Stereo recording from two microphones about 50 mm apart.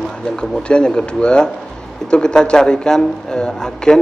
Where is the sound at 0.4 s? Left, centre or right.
Centre.